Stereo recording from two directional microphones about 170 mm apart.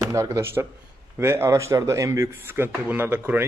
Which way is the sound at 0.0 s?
20° right (ahead or behind).